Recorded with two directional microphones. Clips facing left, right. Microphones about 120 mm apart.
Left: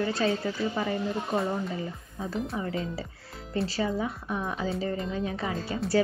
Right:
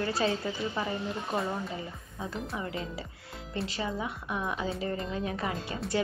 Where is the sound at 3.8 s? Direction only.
40° left (ahead or behind).